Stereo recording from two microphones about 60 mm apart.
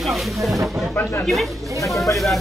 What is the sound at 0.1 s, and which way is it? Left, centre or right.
Speech, centre.